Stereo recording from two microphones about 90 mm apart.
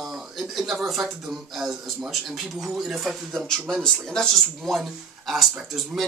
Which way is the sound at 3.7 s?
10° left (ahead or behind).